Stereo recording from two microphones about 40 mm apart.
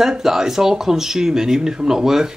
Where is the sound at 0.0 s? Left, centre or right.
Centre.